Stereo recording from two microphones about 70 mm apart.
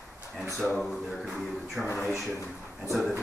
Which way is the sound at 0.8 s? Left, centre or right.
Centre.